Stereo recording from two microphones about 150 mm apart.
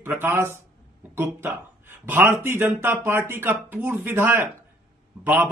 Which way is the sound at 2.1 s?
15° right (ahead or behind).